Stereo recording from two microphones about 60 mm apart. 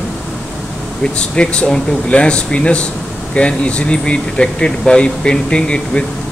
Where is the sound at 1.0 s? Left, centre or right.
Centre.